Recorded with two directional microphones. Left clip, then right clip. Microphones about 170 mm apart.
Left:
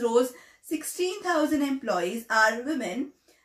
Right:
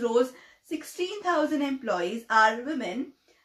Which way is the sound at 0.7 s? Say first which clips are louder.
Left 3 dB; 20° right (ahead or behind).